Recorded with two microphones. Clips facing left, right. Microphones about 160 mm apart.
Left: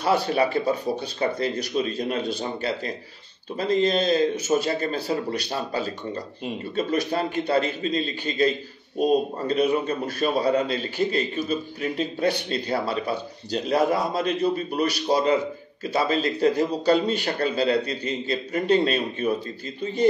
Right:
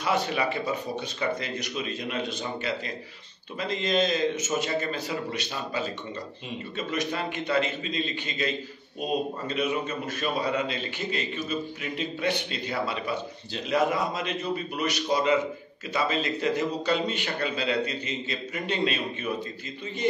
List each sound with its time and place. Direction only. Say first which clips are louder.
0.0 s a man's voice: left 5 dB; 35° left (ahead or behind)